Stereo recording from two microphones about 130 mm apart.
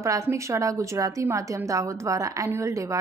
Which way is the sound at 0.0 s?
25° right (ahead or behind).